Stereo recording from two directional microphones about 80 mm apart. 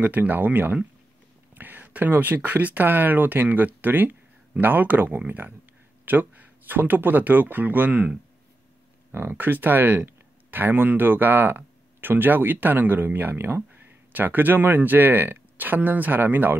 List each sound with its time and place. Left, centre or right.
0.0 s speech: right
9.1 s speech: right